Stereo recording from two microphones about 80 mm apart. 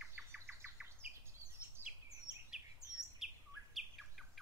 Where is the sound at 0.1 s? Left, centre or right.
Right.